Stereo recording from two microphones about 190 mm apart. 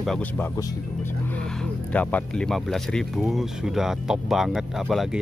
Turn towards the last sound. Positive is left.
turn(degrees=0)  # may be behind; listen again after turning